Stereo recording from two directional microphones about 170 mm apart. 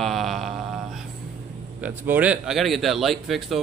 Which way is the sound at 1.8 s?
10° right (ahead or behind).